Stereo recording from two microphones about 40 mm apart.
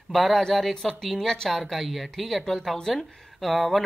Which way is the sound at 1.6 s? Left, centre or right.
Centre.